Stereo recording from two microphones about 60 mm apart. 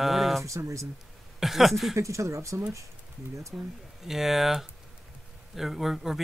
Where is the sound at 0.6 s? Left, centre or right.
Right.